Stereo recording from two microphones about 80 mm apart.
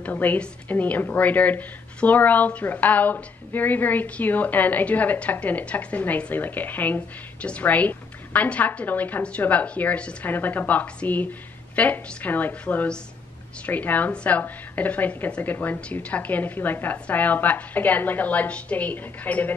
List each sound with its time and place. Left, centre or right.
0.0 s a woman's voice: left